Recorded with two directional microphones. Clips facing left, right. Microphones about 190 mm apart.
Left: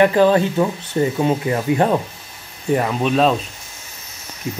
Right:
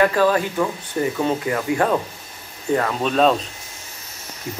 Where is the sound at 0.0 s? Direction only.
25° left (ahead or behind); by 3.3 s 5° left (ahead or behind).